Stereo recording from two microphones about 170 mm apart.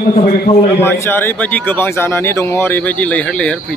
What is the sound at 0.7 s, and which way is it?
A man's voice, 15° left (ahead or behind).